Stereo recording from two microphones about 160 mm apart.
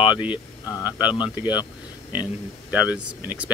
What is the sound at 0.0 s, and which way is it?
Speech, 30° left (ahead or behind).